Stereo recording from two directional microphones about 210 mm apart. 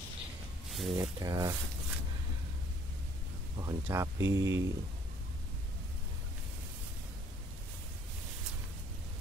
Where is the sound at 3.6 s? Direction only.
15° right (ahead or behind).